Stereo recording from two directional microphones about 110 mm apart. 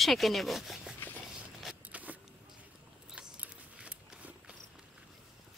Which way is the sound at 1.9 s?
15° right (ahead or behind).